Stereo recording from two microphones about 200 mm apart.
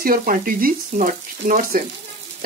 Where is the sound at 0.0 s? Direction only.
45° right (ahead or behind).